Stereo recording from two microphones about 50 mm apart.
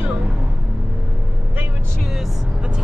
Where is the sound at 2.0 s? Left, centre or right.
Centre.